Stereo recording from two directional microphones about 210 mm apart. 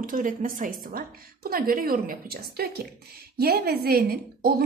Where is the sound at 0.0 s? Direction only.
40° right (ahead or behind).